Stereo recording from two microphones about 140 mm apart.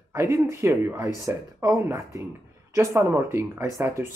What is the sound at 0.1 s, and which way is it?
Speech, 20° right (ahead or behind).